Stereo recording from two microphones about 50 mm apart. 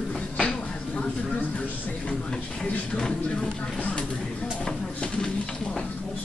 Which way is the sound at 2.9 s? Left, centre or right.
Centre.